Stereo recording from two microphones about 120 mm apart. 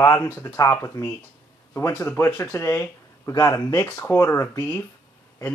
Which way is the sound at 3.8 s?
15° left (ahead or behind).